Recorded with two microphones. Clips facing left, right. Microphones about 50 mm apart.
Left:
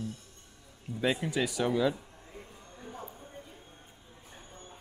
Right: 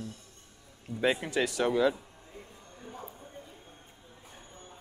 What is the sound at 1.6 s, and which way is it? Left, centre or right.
Speech, centre.